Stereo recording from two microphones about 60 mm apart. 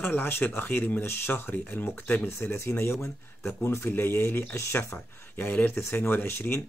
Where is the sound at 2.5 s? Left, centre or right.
Left.